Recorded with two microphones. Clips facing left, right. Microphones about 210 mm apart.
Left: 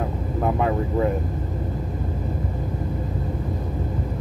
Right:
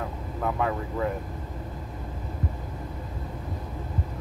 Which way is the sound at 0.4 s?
25° left (ahead or behind).